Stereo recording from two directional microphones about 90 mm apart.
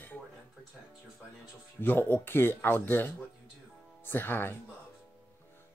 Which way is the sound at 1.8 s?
20° left (ahead or behind).